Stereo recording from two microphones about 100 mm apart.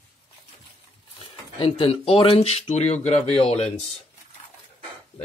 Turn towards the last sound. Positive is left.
turn(degrees=90)